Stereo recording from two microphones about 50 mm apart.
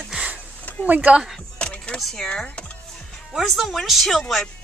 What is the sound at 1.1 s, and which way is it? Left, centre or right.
Speech, centre.